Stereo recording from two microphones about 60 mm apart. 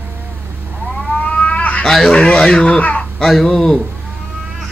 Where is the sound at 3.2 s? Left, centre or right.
Centre.